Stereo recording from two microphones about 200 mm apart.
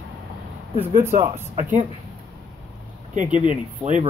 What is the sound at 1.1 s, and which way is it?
Speech, 15° right (ahead or behind).